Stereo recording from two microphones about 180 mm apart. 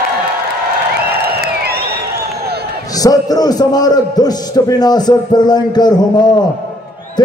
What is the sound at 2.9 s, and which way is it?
A man's voice, 20° left (ahead or behind).